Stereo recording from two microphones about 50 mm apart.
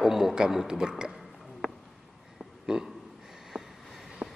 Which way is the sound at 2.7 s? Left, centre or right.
Centre.